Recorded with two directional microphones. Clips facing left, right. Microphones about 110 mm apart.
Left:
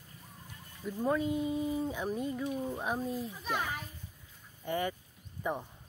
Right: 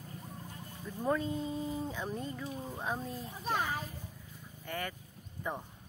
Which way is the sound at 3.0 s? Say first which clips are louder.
Left 6 dB; 5° left (ahead or behind).